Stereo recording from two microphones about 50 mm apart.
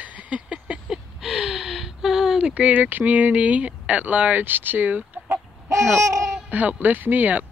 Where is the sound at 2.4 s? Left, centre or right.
Right.